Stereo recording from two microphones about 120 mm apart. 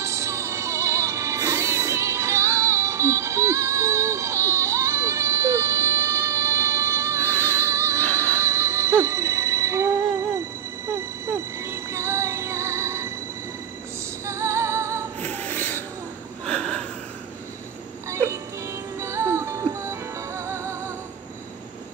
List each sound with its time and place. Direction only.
0.0 s music: 25° right (ahead or behind)
7.2 s music: 15° left (ahead or behind)
7.6 s music: 25° right (ahead or behind)
8.0 s music: 10° left (ahead or behind)
8.4 s music: 25° right (ahead or behind)
14.2 s music: 25° right (ahead or behind)
15.1 s a sound: 15° left (ahead or behind)
16.4 s wheeze: 10° left (ahead or behind)
18.9 s music: 25° right (ahead or behind)